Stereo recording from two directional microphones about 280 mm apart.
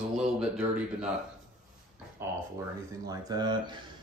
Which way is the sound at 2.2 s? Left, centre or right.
Centre.